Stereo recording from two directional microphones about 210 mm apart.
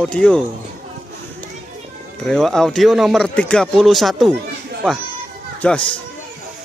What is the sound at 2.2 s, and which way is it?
Speech, centre (ahead or behind).